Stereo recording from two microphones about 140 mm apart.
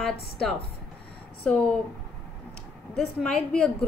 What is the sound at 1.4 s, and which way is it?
Speech, 5° left (ahead or behind).